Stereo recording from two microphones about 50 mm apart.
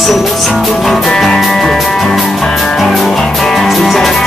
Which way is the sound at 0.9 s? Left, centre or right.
Centre.